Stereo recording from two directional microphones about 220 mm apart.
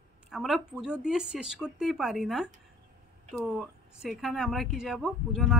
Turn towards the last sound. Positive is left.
turn(degrees=0)  # may be behind; listen again after turning